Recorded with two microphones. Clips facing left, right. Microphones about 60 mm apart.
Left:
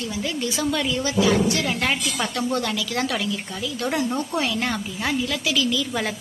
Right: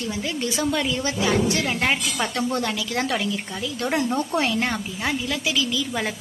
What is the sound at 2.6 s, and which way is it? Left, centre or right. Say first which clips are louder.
A woman's voice: even; right.